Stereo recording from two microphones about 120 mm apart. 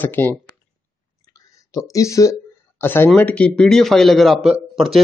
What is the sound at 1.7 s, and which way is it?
A man's voice, 30° left (ahead or behind).